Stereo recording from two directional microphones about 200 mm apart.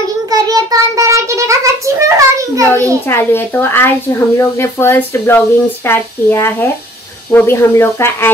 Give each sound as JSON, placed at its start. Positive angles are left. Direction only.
{"t": 0.3, "sound": "child singing", "side_deg": -20}
{"t": 3.1, "sound": "speech", "side_deg": 10}